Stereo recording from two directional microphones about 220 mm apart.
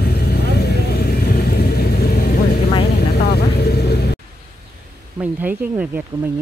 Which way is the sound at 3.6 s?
45° left (ahead or behind).